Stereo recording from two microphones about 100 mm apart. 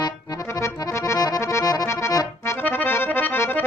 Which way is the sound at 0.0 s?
40° left (ahead or behind).